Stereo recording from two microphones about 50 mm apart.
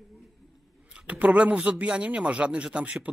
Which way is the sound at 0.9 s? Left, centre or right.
Right.